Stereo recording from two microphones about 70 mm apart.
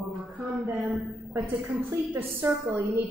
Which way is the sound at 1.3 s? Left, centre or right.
Right.